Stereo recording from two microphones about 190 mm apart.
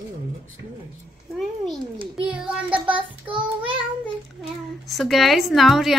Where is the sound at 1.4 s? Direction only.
Centre (ahead or behind).